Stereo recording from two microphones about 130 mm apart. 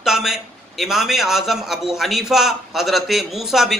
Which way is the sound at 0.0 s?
5° right (ahead or behind).